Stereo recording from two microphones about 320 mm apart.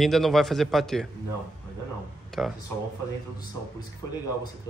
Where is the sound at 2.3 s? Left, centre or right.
Centre.